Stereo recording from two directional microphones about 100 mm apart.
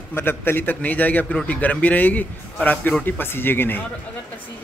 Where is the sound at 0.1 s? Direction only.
20° left (ahead or behind).